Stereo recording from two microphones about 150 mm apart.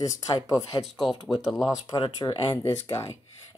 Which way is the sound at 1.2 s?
Centre (ahead or behind).